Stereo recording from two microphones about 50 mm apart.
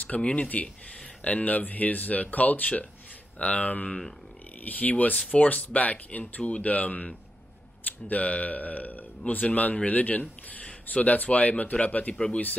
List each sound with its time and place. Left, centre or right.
0.0 s speech: left
8.1 s speech: left